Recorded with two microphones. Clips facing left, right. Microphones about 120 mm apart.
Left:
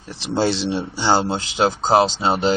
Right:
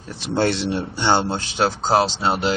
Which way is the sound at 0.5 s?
30° left (ahead or behind).